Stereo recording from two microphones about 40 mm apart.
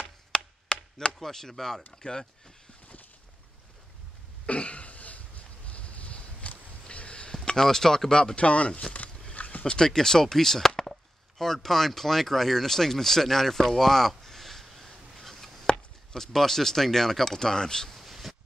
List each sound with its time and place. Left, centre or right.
0.3 s chopping: left
1.2 s speech: centre
4.5 s throat clearing: left
5.7 s a sound: left
7.5 s speech: centre
8.5 s speech: left
9.3 s a sound: left
9.8 s speech: centre
10.8 s chop: centre
15.6 s speech: centre
17.9 s a sound: centre